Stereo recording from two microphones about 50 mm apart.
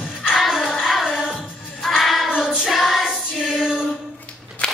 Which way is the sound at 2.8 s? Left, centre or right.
Centre.